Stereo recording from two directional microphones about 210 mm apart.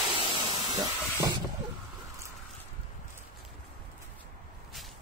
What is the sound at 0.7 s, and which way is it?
Steam, 15° right (ahead or behind).